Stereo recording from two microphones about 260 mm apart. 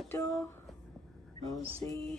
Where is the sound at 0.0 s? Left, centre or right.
Centre.